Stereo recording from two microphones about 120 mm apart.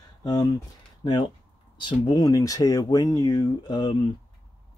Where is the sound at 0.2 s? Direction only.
35° left (ahead or behind).